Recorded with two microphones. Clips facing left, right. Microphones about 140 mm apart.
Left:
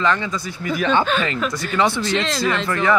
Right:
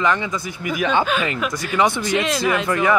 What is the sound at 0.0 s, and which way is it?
Speech, 15° right (ahead or behind).